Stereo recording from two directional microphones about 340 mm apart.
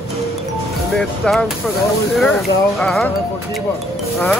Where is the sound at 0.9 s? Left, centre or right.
Centre.